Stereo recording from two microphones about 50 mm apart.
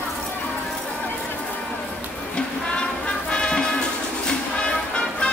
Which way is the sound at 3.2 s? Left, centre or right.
Centre.